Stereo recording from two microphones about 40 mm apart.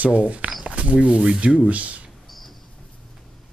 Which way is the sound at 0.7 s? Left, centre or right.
Right.